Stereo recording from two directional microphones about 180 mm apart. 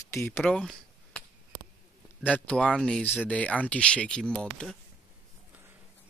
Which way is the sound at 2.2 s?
5° left (ahead or behind).